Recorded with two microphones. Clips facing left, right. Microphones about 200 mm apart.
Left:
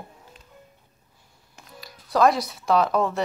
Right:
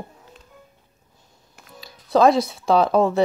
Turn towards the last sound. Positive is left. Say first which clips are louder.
# right 5 dB
turn(degrees=-30)  # may be behind; listen again after turning